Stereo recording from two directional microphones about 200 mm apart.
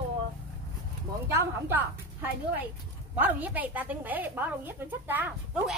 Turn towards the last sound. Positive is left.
turn(degrees=-10)  # may be behind; listen again after turning